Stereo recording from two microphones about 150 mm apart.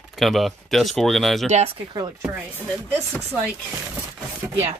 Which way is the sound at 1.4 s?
45° right (ahead or behind).